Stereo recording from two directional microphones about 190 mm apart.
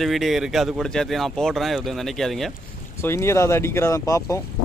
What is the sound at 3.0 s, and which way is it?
Speech, 15° left (ahead or behind).